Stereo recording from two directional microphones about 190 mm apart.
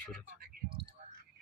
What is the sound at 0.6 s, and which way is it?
Speech, 40° right (ahead or behind).